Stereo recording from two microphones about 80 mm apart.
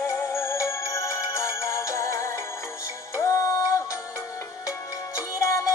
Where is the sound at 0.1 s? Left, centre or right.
Left.